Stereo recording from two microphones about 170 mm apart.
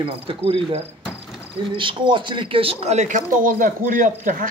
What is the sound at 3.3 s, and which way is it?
Speech, 55° right (ahead or behind).